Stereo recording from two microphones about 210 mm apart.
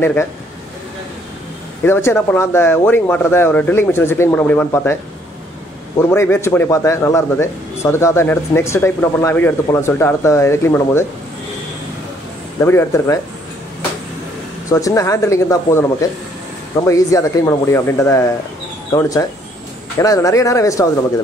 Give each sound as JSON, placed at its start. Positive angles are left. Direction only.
{"t": 0.0, "sound": "a man's voice", "side_deg": 10}
{"t": 1.8, "sound": "a man's voice", "side_deg": 10}
{"t": 6.1, "sound": "a man's voice", "side_deg": 10}
{"t": 12.6, "sound": "a man's voice", "side_deg": 15}
{"t": 14.7, "sound": "a man's voice", "side_deg": 15}